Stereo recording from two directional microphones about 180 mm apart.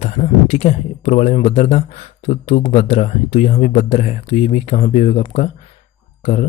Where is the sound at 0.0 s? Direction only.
35° left (ahead or behind).